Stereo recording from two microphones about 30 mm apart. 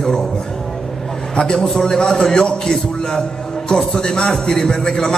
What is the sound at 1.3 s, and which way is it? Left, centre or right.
A man's voice, left.